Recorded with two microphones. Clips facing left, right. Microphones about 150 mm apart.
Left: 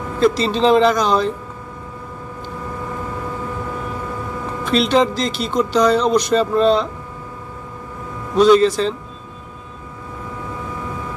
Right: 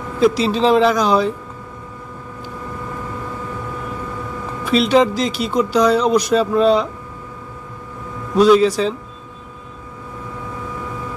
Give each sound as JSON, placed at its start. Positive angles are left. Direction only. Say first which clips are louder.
{"t": 0.2, "sound": "a man's voice", "louder": "right 1 dB", "side_deg": -5}
{"t": 4.6, "sound": "speech", "louder": "right 2 dB", "side_deg": -5}
{"t": 8.4, "sound": "a man's voice", "louder": "even", "side_deg": -5}